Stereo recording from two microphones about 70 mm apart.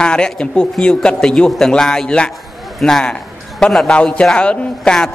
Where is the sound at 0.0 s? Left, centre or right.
Centre.